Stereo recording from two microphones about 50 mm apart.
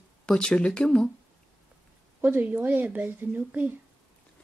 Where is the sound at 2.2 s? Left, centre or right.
Right.